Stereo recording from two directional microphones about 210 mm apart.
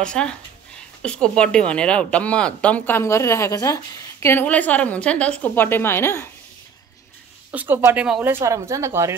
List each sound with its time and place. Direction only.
0.0 s speech: 5° left (ahead or behind)
7.5 s speech: 10° right (ahead or behind)